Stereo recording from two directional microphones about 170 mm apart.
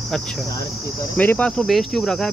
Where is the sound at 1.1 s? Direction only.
10° left (ahead or behind).